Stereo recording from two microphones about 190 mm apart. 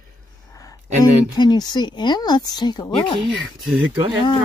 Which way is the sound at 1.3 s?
20° left (ahead or behind).